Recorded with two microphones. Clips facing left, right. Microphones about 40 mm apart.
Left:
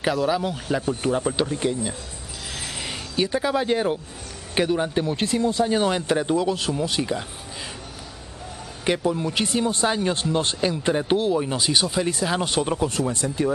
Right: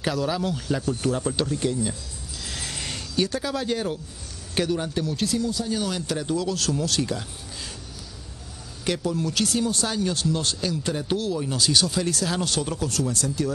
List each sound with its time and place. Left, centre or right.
0.0 s speech: centre
2.5 s a sound: centre
4.6 s speech: left
8.8 s speech: left